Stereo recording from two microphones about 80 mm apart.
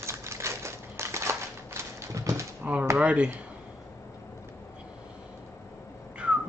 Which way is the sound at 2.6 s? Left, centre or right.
Centre.